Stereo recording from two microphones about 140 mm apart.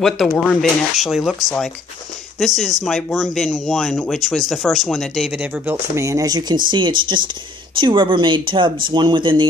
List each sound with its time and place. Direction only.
0.0 s a woman's voice: centre (ahead or behind); by 9.5 s 35° right (ahead or behind)